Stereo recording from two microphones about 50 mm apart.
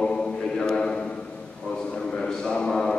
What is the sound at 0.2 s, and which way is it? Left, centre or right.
Mantra, centre.